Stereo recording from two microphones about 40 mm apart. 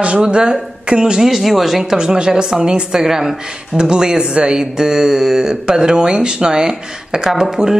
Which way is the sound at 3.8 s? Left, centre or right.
Right.